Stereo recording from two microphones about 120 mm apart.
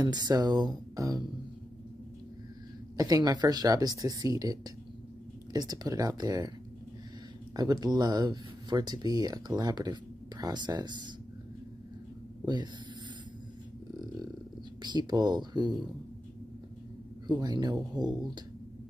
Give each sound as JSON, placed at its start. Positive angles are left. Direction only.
{"t": 0.0, "sound": "speech", "side_deg": -35}
{"t": 3.0, "sound": "speech", "side_deg": -30}
{"t": 7.5, "sound": "speech", "side_deg": -35}
{"t": 14.8, "sound": "speech", "side_deg": -35}
{"t": 17.3, "sound": "speech", "side_deg": -35}